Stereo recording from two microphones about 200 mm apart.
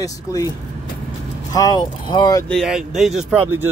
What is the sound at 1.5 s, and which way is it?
Speech, 20° left (ahead or behind).